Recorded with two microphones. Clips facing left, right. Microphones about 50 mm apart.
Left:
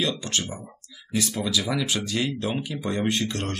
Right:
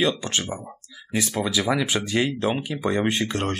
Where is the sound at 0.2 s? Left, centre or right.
Right.